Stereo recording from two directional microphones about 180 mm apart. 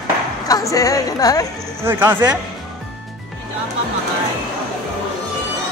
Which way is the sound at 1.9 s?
10° right (ahead or behind).